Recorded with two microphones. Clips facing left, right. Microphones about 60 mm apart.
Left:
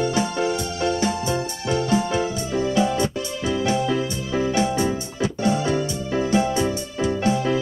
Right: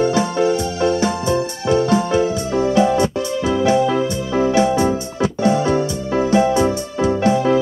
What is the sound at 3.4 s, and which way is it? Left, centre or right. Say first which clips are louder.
Music: right 6 dB; right.